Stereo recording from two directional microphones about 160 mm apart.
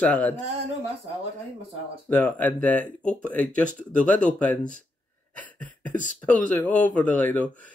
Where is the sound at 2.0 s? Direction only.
10° left (ahead or behind).